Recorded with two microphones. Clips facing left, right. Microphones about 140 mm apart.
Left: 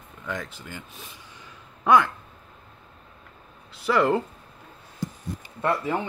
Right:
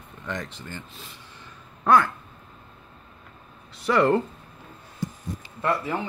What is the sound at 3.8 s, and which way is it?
Speech, centre (ahead or behind).